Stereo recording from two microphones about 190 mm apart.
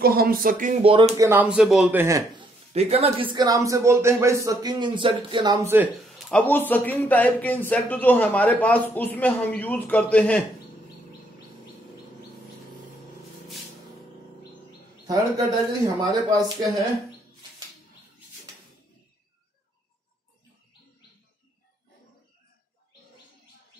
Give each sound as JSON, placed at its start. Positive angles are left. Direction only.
{"t": 0.0, "sound": "speech", "side_deg": -50}
{"t": 0.8, "sound": "speech", "side_deg": -30}
{"t": 1.1, "sound": "speech", "side_deg": -15}
{"t": 2.7, "sound": "speech", "side_deg": -30}
{"t": 6.1, "sound": "speech", "side_deg": 5}
{"t": 15.0, "sound": "speech", "side_deg": -20}